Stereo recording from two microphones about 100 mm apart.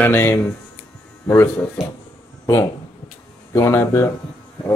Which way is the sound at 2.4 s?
30° left (ahead or behind).